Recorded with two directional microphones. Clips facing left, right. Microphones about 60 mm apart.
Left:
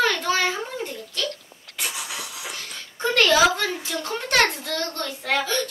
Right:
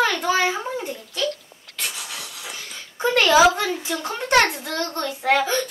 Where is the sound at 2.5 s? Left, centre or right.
Centre.